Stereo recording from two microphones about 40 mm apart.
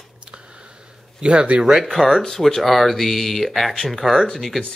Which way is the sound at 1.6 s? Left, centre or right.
Centre.